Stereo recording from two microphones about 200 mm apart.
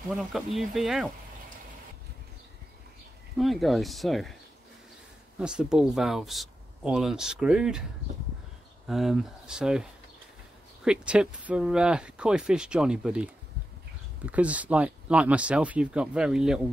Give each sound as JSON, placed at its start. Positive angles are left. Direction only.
{"t": 0.1, "sound": "speech", "side_deg": 0}
{"t": 3.3, "sound": "speech", "side_deg": 0}
{"t": 5.4, "sound": "speech", "side_deg": -5}
{"t": 8.8, "sound": "speech", "side_deg": 0}